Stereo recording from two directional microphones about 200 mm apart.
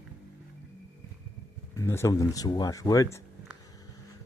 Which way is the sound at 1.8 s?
15° left (ahead or behind).